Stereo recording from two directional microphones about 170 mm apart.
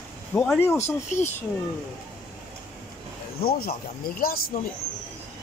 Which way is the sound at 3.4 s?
65° left (ahead or behind).